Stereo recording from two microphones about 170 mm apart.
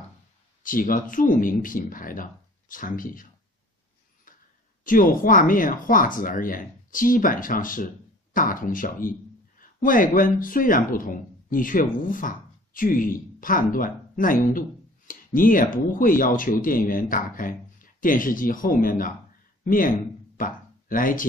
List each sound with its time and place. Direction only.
0.7 s speech: 55° left (ahead or behind)
4.8 s speech: 55° left (ahead or behind)
20.3 s a sound: 55° left (ahead or behind)